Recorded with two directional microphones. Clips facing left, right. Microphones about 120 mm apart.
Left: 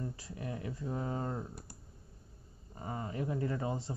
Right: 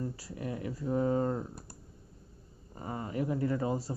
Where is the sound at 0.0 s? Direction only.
30° right (ahead or behind).